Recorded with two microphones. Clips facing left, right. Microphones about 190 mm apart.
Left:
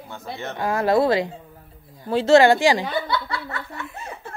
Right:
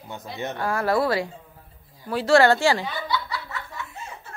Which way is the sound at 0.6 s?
20° left (ahead or behind).